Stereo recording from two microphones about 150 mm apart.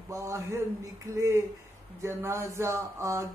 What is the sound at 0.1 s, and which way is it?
Speech, 20° right (ahead or behind).